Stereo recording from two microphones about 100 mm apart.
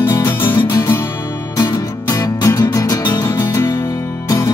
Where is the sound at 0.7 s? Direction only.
35° left (ahead or behind).